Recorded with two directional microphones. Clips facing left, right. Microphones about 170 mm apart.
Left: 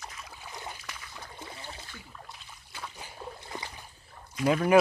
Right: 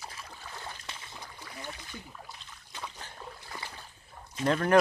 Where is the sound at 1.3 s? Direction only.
25° left (ahead or behind).